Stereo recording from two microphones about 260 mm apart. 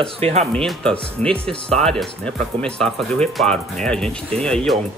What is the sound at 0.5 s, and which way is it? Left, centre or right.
Speech, centre.